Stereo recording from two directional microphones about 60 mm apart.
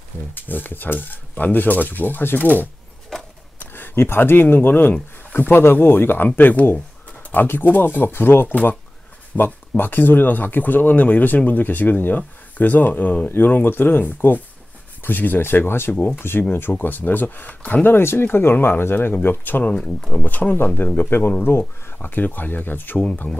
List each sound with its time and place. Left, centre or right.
0.3 s speech: left
3.1 s a sound: centre
3.5 s speech: left
6.2 s speech: left
8.5 s speech: left
19.7 s speech: centre
20.2 s speech: left
22.9 s speech: left